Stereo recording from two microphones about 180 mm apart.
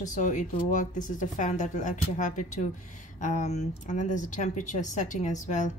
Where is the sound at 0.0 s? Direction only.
45° left (ahead or behind).